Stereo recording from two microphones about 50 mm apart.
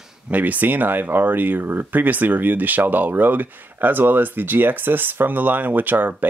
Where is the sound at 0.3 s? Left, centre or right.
Right.